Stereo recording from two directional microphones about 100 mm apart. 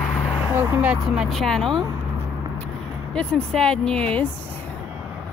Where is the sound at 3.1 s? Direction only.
5° left (ahead or behind).